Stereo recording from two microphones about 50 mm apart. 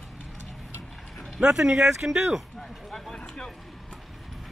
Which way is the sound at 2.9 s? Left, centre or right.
Centre.